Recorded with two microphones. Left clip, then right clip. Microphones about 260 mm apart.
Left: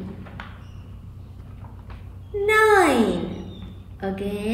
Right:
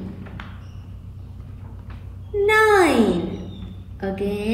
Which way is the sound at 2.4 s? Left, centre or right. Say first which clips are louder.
Right 1 dB; centre.